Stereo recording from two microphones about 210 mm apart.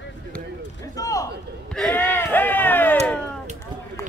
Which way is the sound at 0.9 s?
15° left (ahead or behind).